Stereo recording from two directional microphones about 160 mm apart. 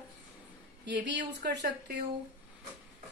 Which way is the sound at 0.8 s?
90° right.